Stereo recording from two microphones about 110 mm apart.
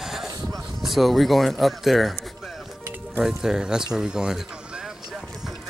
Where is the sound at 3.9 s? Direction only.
5° right (ahead or behind).